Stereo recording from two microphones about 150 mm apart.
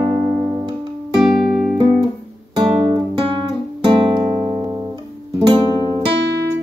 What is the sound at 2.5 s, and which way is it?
Guitar, 30° right (ahead or behind).